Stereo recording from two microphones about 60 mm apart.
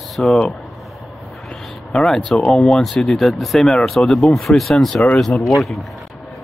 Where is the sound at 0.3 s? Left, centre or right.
Centre.